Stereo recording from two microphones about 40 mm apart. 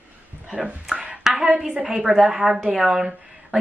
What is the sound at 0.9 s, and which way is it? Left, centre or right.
Hands, right.